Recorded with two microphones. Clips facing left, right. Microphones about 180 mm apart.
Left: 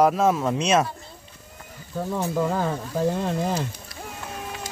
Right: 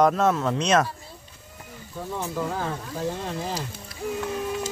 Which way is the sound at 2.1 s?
55° left (ahead or behind).